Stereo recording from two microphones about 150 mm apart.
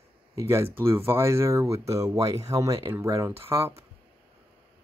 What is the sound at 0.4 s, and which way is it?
Speech, 15° right (ahead or behind).